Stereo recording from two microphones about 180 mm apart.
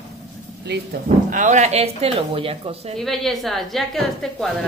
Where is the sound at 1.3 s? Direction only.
40° right (ahead or behind).